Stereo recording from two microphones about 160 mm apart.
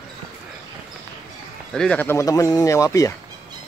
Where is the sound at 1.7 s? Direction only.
5° left (ahead or behind).